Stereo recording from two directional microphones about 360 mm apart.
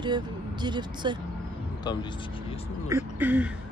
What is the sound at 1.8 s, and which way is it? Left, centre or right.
Speech, centre.